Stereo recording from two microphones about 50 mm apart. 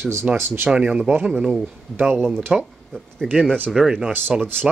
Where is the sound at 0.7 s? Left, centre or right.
Centre.